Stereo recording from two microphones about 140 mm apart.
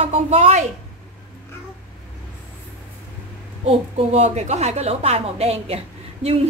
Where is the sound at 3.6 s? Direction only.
50° right (ahead or behind).